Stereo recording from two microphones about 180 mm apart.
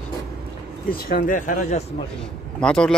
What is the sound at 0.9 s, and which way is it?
Speech, 55° left (ahead or behind).